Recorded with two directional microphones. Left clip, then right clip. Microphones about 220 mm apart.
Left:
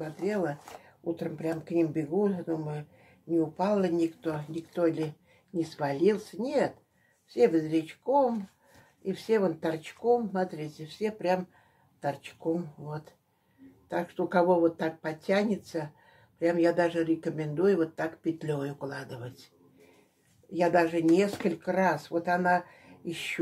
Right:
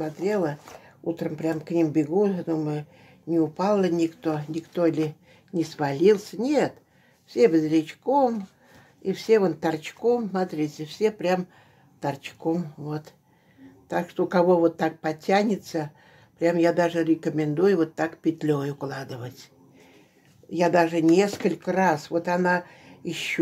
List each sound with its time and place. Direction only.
0.2 s speech: 40° right (ahead or behind)
13.8 s speech: 45° right (ahead or behind)
20.5 s speech: 40° right (ahead or behind)